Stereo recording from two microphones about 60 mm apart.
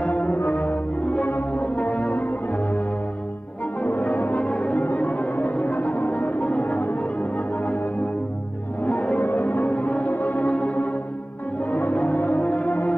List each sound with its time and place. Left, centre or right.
0.0 s music: left
3.8 s music: left